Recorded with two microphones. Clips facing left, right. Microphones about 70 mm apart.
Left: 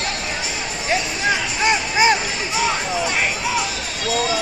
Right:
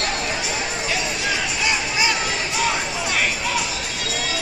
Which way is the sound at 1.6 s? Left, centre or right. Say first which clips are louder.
Left 7 dB; left.